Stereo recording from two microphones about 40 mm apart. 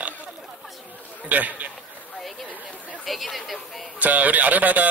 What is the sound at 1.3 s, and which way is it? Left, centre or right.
Speech, right.